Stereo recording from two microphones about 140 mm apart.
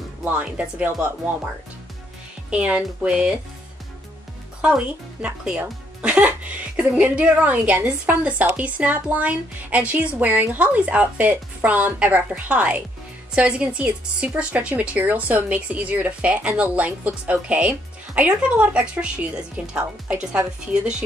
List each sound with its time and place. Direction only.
0.2 s speech: 10° right (ahead or behind)
2.5 s speech: 10° right (ahead or behind)
5.2 s speech: 10° right (ahead or behind)